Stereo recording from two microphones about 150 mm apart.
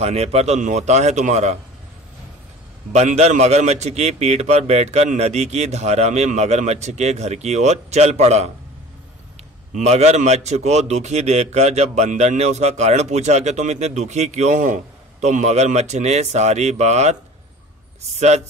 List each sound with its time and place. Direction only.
0.0 s a man's voice: 45° right (ahead or behind)
2.9 s a man's voice: 50° right (ahead or behind)
9.8 s a man's voice: 45° right (ahead or behind)